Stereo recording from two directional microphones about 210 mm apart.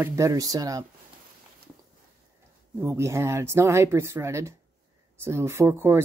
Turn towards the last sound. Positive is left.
turn(degrees=-10)  # may be behind; listen again after turning